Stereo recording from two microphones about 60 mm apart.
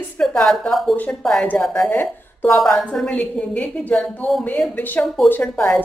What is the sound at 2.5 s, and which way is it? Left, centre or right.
Speech, centre.